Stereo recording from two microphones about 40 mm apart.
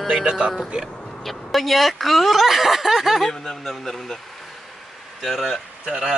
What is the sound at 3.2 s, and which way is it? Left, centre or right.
Speech, centre.